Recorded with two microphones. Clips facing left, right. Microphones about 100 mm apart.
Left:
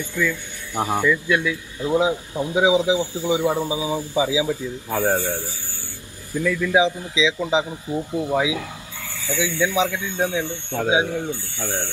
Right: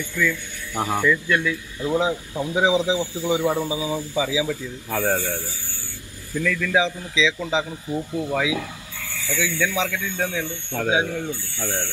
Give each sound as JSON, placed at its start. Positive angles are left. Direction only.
{"t": 0.0, "sound": "a man's voice", "side_deg": 20}